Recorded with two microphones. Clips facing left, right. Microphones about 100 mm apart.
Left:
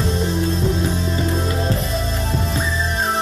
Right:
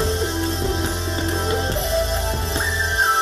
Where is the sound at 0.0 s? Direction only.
30° right (ahead or behind).